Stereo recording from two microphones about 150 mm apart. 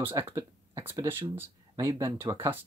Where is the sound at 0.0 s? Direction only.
15° right (ahead or behind).